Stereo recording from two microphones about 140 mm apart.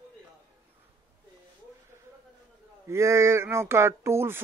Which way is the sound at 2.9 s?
20° right (ahead or behind).